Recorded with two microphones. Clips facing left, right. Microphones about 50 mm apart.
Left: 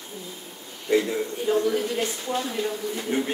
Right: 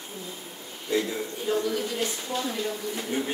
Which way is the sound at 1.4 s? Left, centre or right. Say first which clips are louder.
Left 4 dB; left.